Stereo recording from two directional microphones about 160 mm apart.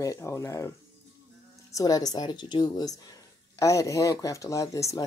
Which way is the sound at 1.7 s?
25° left (ahead or behind).